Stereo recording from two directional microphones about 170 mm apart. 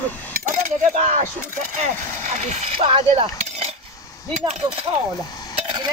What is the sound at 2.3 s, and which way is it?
Speech, 40° right (ahead or behind).